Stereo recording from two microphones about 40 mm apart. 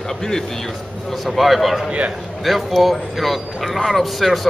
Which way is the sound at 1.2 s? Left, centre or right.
Centre.